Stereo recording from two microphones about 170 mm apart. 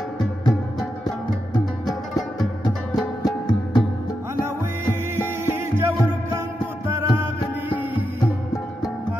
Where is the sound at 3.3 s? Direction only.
25° left (ahead or behind).